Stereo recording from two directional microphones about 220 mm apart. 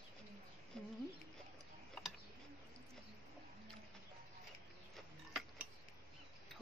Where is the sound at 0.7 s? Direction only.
5° left (ahead or behind).